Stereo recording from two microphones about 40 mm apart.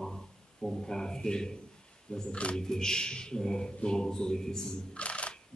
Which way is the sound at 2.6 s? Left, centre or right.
Centre.